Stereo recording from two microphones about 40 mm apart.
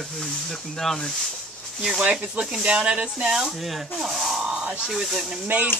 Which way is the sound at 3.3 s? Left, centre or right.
Centre.